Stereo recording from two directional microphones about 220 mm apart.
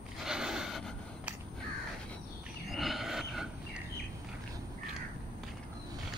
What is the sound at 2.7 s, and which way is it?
Wild animals, centre (ahead or behind).